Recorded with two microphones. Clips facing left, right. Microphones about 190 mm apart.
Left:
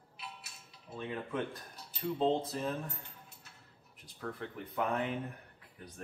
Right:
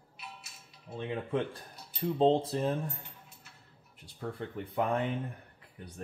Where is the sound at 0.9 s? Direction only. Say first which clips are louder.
Right 4 dB; 30° right (ahead or behind).